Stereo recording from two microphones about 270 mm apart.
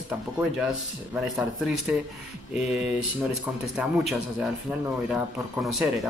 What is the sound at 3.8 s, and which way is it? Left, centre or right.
Speech, centre.